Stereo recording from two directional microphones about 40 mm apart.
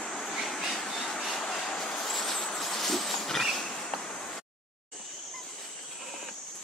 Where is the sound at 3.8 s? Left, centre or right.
Centre.